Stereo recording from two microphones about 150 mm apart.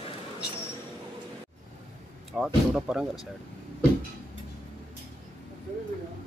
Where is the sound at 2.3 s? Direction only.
5° right (ahead or behind).